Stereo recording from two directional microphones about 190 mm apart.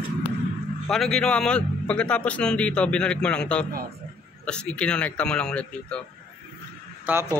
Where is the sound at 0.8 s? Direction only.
5° left (ahead or behind).